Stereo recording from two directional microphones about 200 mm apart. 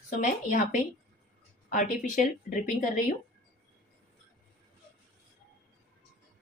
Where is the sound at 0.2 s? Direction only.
40° left (ahead or behind).